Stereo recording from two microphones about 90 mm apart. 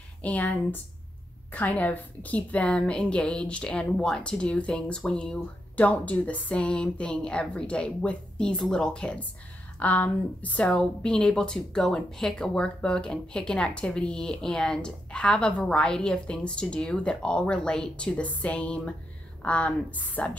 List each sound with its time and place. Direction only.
0.2 s speech: 15° left (ahead or behind)